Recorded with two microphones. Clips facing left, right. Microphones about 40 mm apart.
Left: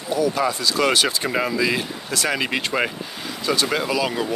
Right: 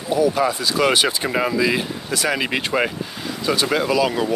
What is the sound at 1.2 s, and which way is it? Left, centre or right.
Speech, centre.